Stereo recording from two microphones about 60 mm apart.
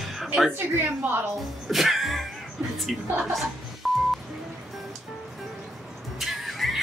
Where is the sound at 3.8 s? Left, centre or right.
Centre.